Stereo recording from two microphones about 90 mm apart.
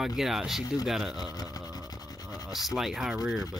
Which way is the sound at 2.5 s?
Centre (ahead or behind).